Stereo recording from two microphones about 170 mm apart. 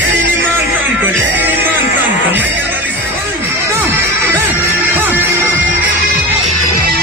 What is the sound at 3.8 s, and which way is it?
Music, 10° right (ahead or behind).